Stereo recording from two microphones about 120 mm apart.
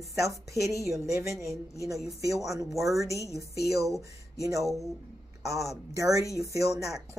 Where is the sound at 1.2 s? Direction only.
25° right (ahead or behind).